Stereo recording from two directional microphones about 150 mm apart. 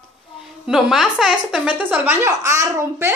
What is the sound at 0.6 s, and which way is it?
A woman's voice, centre (ahead or behind).